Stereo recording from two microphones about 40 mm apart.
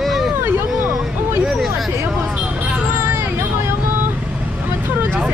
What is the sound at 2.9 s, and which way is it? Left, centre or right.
Hubbub, right.